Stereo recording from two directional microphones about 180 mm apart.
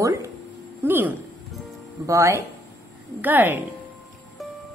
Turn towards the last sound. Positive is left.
turn(degrees=-10)  # may be behind; listen again after turning